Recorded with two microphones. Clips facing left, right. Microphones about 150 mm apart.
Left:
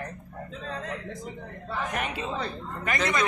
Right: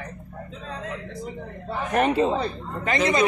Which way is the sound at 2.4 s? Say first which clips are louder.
Right 5 dB; 20° right (ahead or behind).